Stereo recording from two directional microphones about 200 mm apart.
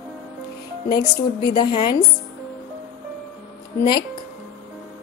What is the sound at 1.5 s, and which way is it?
Speech, 25° left (ahead or behind).